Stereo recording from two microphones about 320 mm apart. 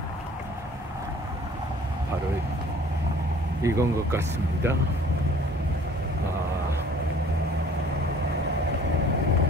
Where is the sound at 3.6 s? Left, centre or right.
Centre.